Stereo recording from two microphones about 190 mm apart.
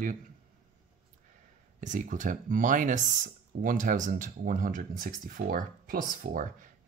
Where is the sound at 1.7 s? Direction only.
40° right (ahead or behind).